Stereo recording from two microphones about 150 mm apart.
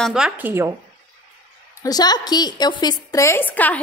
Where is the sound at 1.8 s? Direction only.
25° left (ahead or behind); by 3.8 s 10° left (ahead or behind).